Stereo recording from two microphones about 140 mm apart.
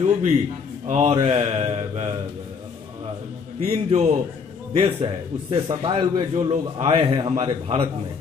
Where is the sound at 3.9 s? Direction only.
50° right (ahead or behind).